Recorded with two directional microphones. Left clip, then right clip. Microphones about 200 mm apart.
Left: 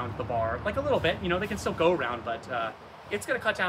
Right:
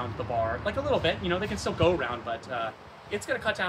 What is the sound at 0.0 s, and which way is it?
Speech, centre (ahead or behind).